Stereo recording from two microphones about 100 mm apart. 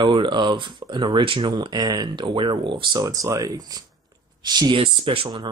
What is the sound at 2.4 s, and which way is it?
Speech, 55° right (ahead or behind).